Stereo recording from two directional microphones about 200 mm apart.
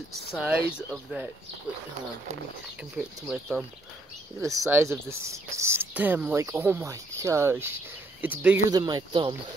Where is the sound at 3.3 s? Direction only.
Centre (ahead or behind).